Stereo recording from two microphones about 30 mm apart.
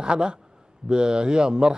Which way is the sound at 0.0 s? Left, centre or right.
Right.